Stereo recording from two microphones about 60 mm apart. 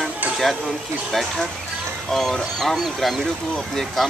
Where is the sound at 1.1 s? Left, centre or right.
Centre.